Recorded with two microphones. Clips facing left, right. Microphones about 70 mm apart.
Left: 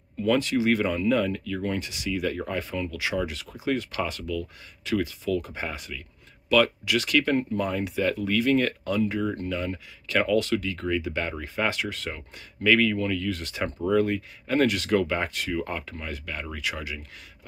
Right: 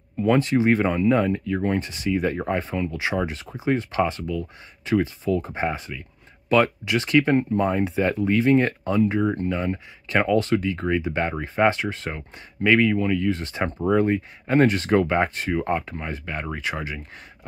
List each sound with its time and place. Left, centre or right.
0.2 s speech: right